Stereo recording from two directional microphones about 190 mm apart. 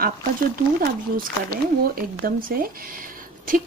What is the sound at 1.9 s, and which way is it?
Speech, 50° right (ahead or behind).